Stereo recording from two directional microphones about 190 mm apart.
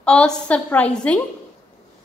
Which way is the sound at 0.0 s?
5° left (ahead or behind).